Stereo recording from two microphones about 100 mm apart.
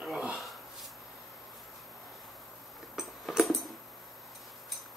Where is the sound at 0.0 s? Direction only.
10° right (ahead or behind).